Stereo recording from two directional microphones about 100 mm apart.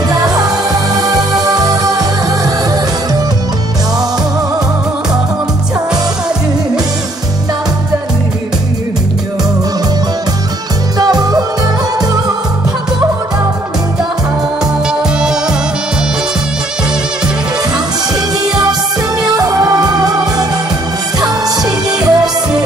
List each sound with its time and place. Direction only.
0.1 s music: 40° right (ahead or behind)
11.0 s music: 40° right (ahead or behind)
19.3 s music: 40° right (ahead or behind)
22.0 s music: 5° right (ahead or behind)